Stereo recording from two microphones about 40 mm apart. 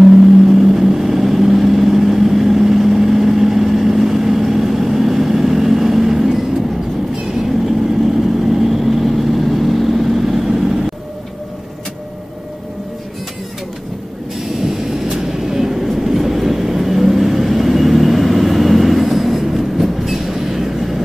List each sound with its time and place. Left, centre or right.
0.0 s vehicle: centre
8.5 s vehicle: centre
14.6 s vehicle: centre